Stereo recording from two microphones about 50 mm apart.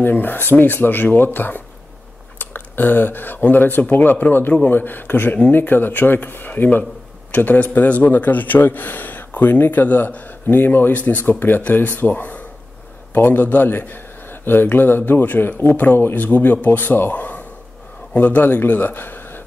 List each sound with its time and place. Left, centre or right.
0.0 s a man's voice: left
10.9 s a man's voice: left